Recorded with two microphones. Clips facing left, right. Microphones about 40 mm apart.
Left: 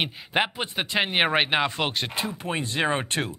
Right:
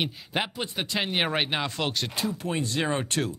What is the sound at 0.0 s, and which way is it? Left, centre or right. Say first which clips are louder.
Speech: left 4 dB; left.